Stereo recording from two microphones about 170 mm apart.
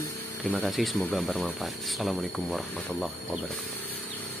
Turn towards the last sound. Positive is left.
turn(degrees=0)  # may be behind; listen again after turning